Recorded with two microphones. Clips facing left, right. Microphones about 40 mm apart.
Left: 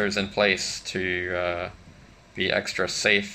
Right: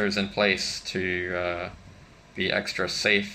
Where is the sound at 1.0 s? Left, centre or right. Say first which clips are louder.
Left 1 dB; centre.